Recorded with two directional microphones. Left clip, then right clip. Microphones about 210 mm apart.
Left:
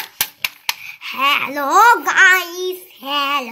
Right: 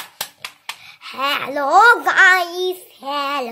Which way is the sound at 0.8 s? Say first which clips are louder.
Left 3 dB; 20° right (ahead or behind).